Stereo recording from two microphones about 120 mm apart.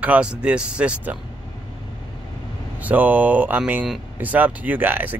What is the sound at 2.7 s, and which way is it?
Speech, 15° right (ahead or behind).